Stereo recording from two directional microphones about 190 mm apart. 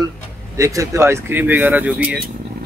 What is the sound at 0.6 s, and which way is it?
Speech, 15° right (ahead or behind).